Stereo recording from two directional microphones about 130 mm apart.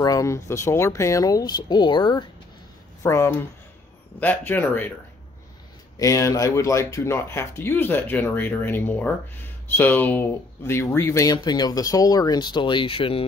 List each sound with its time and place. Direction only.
0.0 s speech: 25° left (ahead or behind)
3.0 s speech: 25° left (ahead or behind)
5.9 s speech: 25° left (ahead or behind); by 13.2 s 45° left (ahead or behind)